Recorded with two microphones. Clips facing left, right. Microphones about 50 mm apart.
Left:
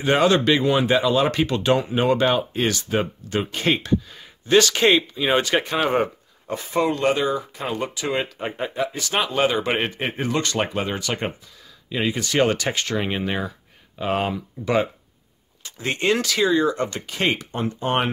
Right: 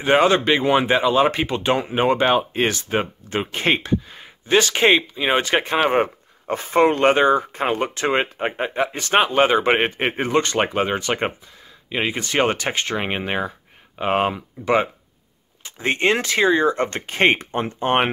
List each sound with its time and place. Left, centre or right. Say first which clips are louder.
0.0 s speech: right 2 dB; right